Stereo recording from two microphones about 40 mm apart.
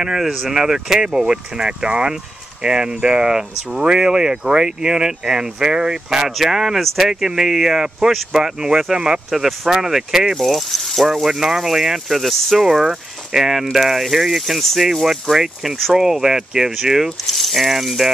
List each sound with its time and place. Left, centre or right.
0.0 s speech: centre
12.7 s speech: centre
17.3 s speech: centre